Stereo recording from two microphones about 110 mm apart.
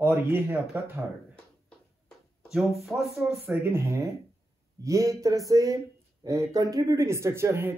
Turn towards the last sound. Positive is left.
turn(degrees=-25)  # may be behind; listen again after turning